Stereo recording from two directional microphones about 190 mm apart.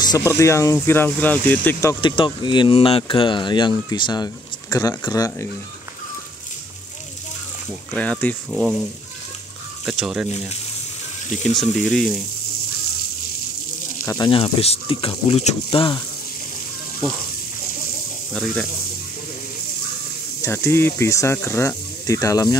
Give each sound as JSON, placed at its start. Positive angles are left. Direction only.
{"t": 0.0, "sound": "speech", "side_deg": 20}
{"t": 7.9, "sound": "speech", "side_deg": 10}
{"t": 8.5, "sound": "speech", "side_deg": -5}
{"t": 9.8, "sound": "speech", "side_deg": -5}
{"t": 14.0, "sound": "speech", "side_deg": 20}
{"t": 18.3, "sound": "speech", "side_deg": 10}
{"t": 20.4, "sound": "speech", "side_deg": 15}